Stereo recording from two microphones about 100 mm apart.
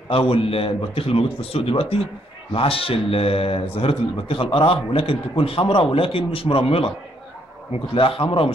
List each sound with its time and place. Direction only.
0.1 s a man's voice: 70° left (ahead or behind)
7.9 s a man's voice: 65° left (ahead or behind)